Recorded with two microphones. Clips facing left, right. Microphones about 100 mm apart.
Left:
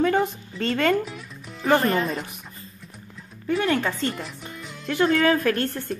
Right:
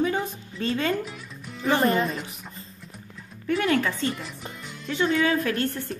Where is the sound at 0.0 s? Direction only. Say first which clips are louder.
Left 4 dB; 55° left (ahead or behind).